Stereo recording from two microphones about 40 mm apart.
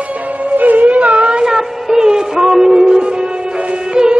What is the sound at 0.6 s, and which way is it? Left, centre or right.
Music, right.